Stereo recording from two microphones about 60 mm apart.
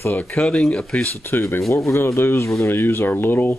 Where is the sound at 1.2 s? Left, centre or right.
Left.